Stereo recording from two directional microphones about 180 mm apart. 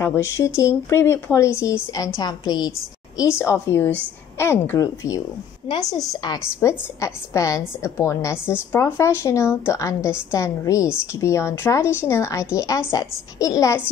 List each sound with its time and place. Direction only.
0.0 s a woman's voice: 15° left (ahead or behind)